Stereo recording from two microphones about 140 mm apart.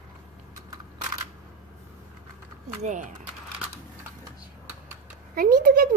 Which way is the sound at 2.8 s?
65° right (ahead or behind).